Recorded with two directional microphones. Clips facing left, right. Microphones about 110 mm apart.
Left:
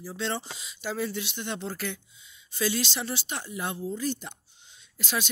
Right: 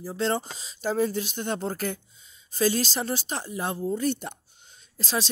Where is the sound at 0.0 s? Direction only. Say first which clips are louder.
Right 5 dB; 40° right (ahead or behind).